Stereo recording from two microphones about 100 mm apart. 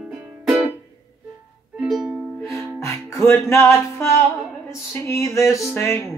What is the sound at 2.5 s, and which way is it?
Music, 25° left (ahead or behind).